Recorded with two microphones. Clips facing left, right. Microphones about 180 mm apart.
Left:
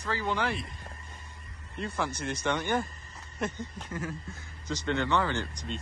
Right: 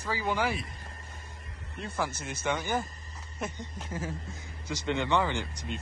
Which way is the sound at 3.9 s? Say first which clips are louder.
Right 1 dB; 25° right (ahead or behind).